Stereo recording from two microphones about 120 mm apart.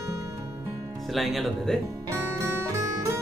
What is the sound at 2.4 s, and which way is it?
Music, 30° right (ahead or behind).